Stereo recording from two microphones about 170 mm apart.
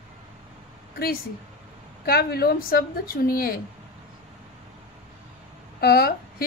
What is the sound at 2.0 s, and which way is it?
A woman's voice, 65° left (ahead or behind).